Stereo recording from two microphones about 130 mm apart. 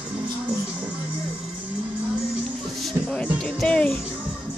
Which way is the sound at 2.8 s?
5° left (ahead or behind).